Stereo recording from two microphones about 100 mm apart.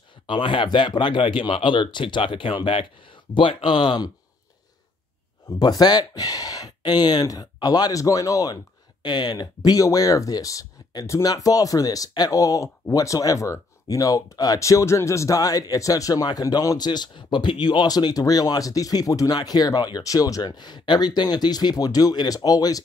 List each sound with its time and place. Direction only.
0.3 s speech: 55° left (ahead or behind)
5.5 s speech: 45° left (ahead or behind)